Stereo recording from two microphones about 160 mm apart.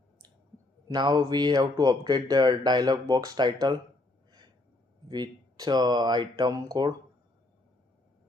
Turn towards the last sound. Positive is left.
turn(degrees=-25)  # may be behind; listen again after turning